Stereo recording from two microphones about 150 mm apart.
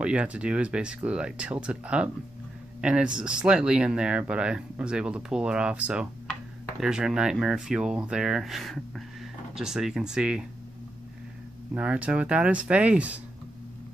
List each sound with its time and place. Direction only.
0.0 s speech: 10° right (ahead or behind)
11.7 s speech: 10° right (ahead or behind)